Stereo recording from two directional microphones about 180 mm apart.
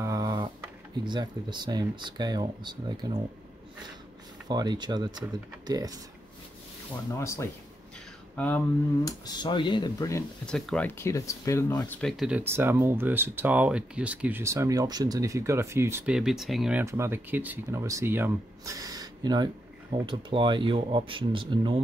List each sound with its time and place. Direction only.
0.0 s a sound: 20° right (ahead or behind)
1.0 s speech: 25° right (ahead or behind)
4.5 s speech: 25° right (ahead or behind)
7.2 s speech: 15° left (ahead or behind)
9.0 s speech: 25° left (ahead or behind)
10.4 s speech: 5° left (ahead or behind)
16.8 s speech: 15° right (ahead or behind)